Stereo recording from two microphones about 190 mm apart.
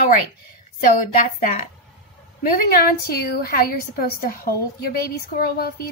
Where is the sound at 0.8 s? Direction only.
50° left (ahead or behind).